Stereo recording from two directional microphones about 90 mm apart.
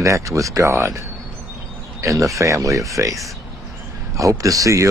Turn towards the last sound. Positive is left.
turn(degrees=-35)  # may be behind; listen again after turning